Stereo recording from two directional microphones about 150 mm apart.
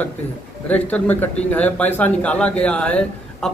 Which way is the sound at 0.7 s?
10° left (ahead or behind).